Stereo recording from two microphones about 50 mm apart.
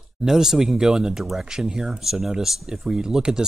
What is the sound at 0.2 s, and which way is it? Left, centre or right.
Speech, centre.